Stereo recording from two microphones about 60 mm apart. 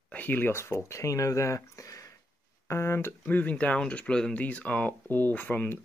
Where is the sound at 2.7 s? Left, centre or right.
Left.